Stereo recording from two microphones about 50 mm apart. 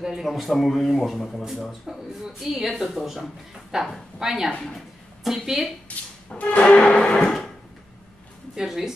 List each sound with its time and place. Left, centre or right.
0.0 s speech: centre
4.5 s a woman's voice: centre
5.9 s music: left
8.5 s speech: centre